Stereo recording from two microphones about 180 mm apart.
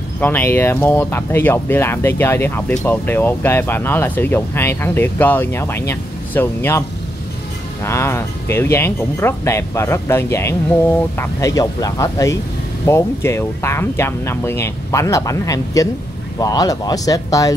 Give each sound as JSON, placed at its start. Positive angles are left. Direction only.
{"t": 0.2, "sound": "speech", "side_deg": 10}
{"t": 7.8, "sound": "speech", "side_deg": 15}